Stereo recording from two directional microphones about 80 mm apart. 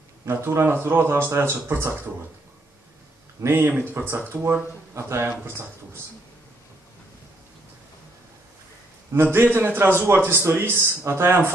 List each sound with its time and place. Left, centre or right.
0.3 s a man's voice: right
3.3 s a man's voice: right
9.1 s a man's voice: right